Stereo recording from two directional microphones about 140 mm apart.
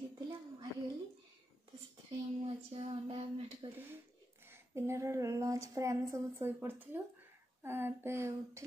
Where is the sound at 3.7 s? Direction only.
15° right (ahead or behind).